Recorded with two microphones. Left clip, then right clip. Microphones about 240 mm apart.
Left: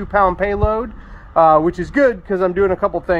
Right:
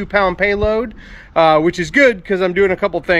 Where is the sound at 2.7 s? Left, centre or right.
Right.